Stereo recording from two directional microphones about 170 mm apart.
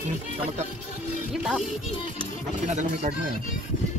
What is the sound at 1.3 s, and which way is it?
Music, 5° right (ahead or behind).